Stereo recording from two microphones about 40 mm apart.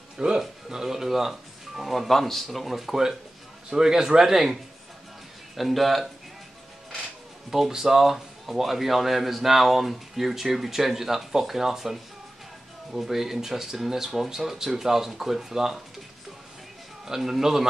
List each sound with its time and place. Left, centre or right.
0.2 s speech: centre
2.6 s speech: centre
3.7 s speech: centre
5.6 s speech: centre
7.5 s speech: centre
17.0 s speech: centre